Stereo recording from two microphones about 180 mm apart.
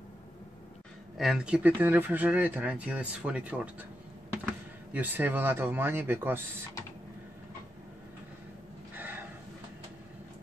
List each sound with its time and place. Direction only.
1.1 s speech: centre (ahead or behind)
4.9 s speech: 10° right (ahead or behind)
8.9 s gasp: 10° right (ahead or behind)